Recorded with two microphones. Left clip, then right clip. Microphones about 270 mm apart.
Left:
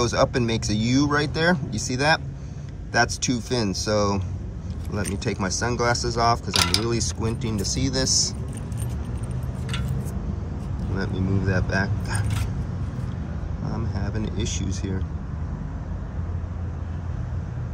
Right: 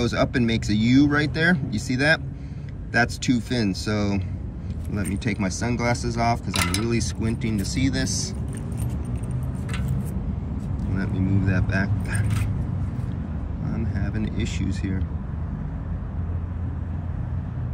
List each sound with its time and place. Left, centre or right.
0.0 s speech: centre
6.5 s speech: left
6.9 s speech: centre
11.0 s speech: centre
13.9 s speech: centre